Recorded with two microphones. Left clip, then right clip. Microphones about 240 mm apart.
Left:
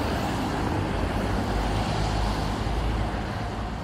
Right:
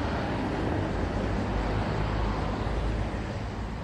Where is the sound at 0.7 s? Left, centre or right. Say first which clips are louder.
Left 3 dB; centre.